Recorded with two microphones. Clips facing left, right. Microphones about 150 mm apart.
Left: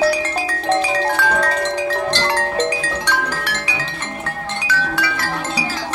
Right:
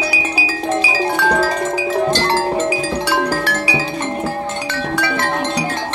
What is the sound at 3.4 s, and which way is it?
Music, 30° right (ahead or behind).